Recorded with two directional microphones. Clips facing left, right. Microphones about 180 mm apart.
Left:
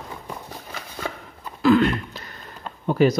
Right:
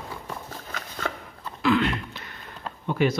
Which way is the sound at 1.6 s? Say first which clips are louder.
Left 5 dB; 40° left (ahead or behind).